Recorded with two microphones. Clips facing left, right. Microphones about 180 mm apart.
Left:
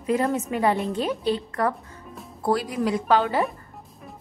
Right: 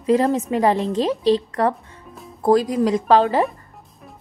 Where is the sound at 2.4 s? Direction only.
45° right (ahead or behind).